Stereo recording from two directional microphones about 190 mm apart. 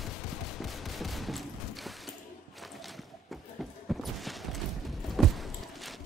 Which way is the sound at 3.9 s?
Centre (ahead or behind).